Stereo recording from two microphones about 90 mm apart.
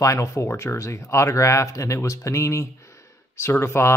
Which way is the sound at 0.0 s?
35° left (ahead or behind).